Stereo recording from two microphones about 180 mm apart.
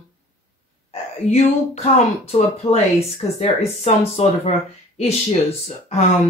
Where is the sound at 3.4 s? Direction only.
40° left (ahead or behind).